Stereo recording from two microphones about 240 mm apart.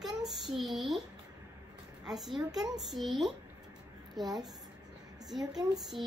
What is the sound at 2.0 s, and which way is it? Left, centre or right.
Speech, centre.